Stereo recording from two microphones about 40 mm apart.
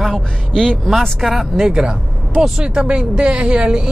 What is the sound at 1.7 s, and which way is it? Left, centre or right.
A woman's voice, centre.